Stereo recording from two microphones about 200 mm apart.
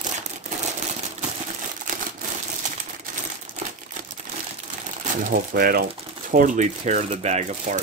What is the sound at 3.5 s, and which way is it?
Crumpling, 40° right (ahead or behind).